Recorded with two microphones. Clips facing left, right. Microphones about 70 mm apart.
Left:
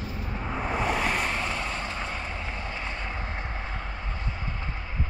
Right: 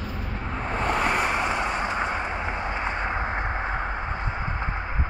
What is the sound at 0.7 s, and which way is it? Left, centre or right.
Vehicle, centre.